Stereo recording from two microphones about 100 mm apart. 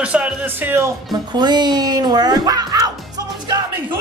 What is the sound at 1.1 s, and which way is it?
A child's voice, 45° right (ahead or behind).